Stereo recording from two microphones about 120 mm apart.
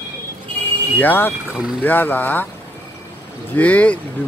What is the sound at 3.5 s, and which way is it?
Speech, 10° left (ahead or behind).